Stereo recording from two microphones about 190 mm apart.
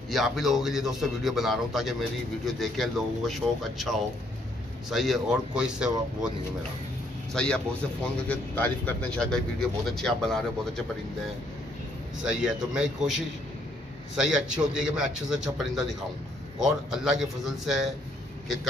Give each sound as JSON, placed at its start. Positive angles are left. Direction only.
{"t": 0.1, "sound": "a man's voice", "side_deg": 0}
{"t": 7.3, "sound": "a man's voice", "side_deg": 5}
{"t": 12.2, "sound": "a man's voice", "side_deg": -5}